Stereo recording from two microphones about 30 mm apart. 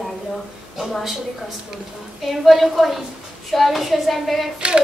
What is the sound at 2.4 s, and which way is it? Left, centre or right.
Speech, centre.